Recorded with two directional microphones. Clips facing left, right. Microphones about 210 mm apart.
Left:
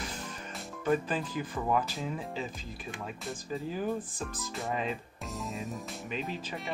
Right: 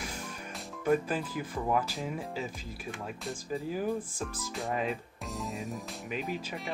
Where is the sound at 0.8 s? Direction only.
5° right (ahead or behind).